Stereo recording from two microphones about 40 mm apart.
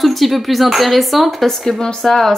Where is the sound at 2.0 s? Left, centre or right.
Centre.